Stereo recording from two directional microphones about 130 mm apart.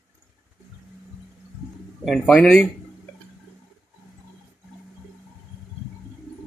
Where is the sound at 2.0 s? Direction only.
Centre (ahead or behind).